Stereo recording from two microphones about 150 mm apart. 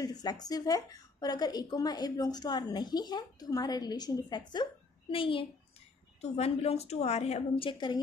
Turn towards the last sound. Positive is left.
turn(degrees=35)  # may be behind; listen again after turning